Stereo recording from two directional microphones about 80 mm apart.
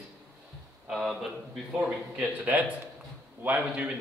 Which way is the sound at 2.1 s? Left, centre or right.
Centre.